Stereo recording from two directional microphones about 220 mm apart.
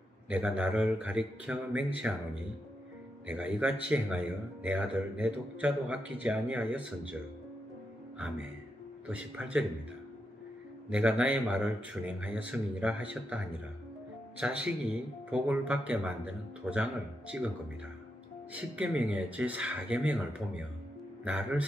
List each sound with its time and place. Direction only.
0.3 s a man's voice: 5° right (ahead or behind)
3.3 s a man's voice: 5° right (ahead or behind)
9.0 s a man's voice: 5° right (ahead or behind)
10.9 s a man's voice: 5° right (ahead or behind)
14.4 s a man's voice: 5° right (ahead or behind)
18.5 s a man's voice: 5° right (ahead or behind)